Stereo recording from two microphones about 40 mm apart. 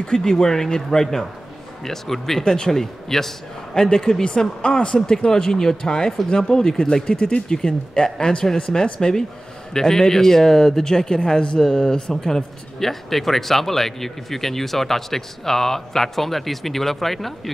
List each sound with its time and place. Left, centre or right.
0.0 s speech: centre
4.2 s speech: left; by 17.3 s centre